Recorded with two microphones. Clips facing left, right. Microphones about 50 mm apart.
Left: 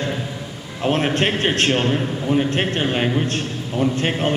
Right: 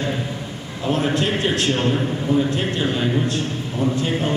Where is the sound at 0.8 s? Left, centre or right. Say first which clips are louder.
Left 1 dB; left.